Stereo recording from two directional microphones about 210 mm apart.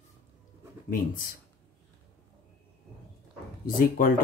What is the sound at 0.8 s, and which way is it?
Speech, 40° left (ahead or behind).